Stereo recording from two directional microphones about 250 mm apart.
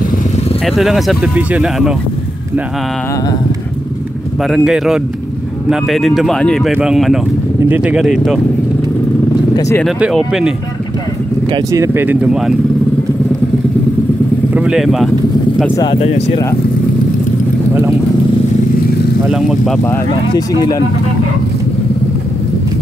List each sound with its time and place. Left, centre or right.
0.7 s speech: centre
4.4 s speech: centre
9.6 s speech: centre
9.8 s speech: centre
11.5 s speech: centre
14.5 s speech: centre
15.7 s speech: centre
19.2 s speech: centre
19.8 s speech: centre